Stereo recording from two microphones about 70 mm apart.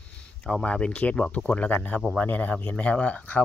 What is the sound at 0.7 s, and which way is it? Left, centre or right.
Speech, centre.